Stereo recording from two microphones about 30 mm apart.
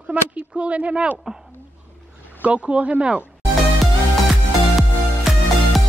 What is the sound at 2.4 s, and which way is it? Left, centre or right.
Speech, right.